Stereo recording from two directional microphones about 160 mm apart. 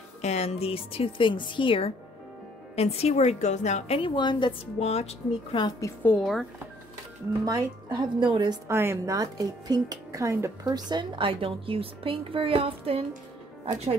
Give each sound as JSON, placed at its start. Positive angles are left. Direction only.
{"t": 0.2, "sound": "a woman's voice", "side_deg": 45}
{"t": 4.7, "sound": "a woman's voice", "side_deg": 40}
{"t": 5.8, "sound": "a woman's voice", "side_deg": 20}
{"t": 6.1, "sound": "speech", "side_deg": 0}
{"t": 7.4, "sound": "speech", "side_deg": -25}
{"t": 8.6, "sound": "speech", "side_deg": -15}